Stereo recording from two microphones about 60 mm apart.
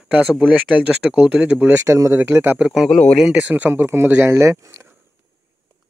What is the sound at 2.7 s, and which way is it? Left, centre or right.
Speech, centre.